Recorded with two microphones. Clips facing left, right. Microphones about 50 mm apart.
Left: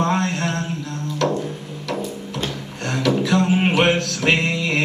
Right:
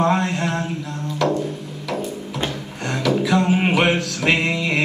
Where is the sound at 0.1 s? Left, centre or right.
Centre.